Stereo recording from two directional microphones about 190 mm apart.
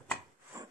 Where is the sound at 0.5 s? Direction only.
15° right (ahead or behind).